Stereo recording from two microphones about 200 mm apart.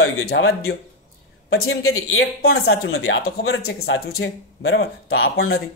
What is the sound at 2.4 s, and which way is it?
Speech, 50° left (ahead or behind).